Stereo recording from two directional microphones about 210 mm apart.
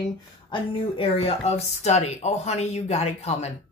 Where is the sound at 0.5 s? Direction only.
25° left (ahead or behind).